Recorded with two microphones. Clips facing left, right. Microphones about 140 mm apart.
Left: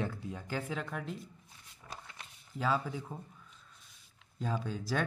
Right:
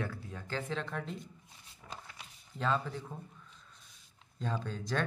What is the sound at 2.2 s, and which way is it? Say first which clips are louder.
Speech: left 1 dB; 5° left (ahead or behind).